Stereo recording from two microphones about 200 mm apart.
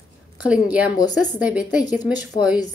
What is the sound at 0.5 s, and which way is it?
A woman's voice, 5° right (ahead or behind).